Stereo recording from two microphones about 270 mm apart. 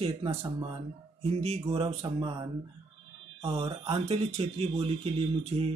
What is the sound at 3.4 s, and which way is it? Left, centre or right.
Speech, right.